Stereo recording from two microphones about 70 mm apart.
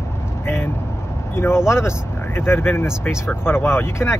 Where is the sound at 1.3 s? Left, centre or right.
Left.